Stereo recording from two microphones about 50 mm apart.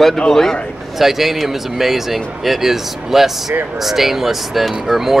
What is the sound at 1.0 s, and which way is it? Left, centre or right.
Speech, centre.